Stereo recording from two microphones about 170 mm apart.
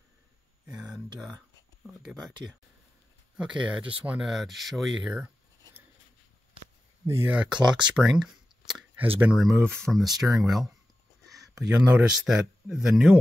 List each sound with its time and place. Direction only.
1.9 s speech: centre (ahead or behind)
3.5 s speech: 30° right (ahead or behind)
4.0 s speech: 5° right (ahead or behind)
7.1 s speech: 10° right (ahead or behind)
7.8 s a sound: 5° right (ahead or behind)
9.2 s speech: 5° right (ahead or behind)
11.7 s speech: 10° right (ahead or behind)